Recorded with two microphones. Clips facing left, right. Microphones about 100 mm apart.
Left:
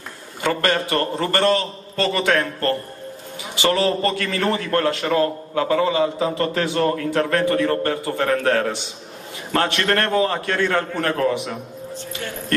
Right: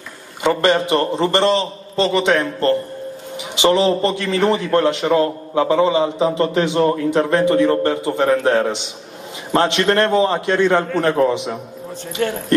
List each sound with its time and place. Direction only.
0.4 s a man's voice: 20° right (ahead or behind)
12.2 s speech: 65° right (ahead or behind)